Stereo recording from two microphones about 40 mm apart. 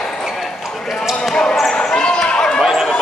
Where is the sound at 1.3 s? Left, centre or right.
Centre.